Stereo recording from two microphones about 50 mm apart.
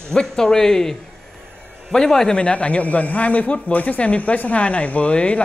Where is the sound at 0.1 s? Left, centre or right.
Centre.